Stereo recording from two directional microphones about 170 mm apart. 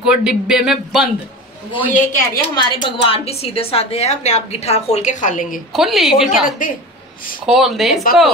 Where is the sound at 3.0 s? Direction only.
35° left (ahead or behind); by 5.5 s 50° left (ahead or behind).